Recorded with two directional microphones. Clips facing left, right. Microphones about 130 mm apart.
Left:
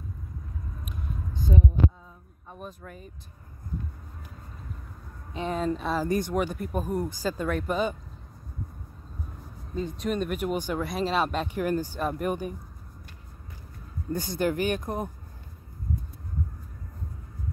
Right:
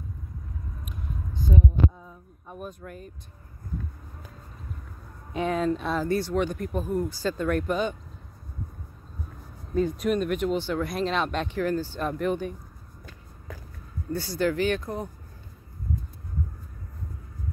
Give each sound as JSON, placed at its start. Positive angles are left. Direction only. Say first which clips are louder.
{"t": 2.5, "sound": "speech", "louder": "right 3 dB", "side_deg": -5}
{"t": 5.5, "sound": "speech", "louder": "right 1 dB", "side_deg": 0}
{"t": 6.0, "sound": "speech", "louder": "right 2 dB", "side_deg": 15}
{"t": 9.8, "sound": "speech", "louder": "right 4 dB", "side_deg": 0}
{"t": 14.1, "sound": "speech", "louder": "right 1 dB", "side_deg": 15}